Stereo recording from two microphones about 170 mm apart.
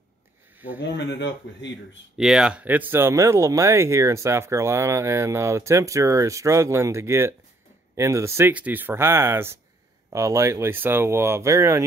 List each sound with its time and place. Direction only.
0.7 s speech: 90° left
2.1 s speech: 5° right (ahead or behind)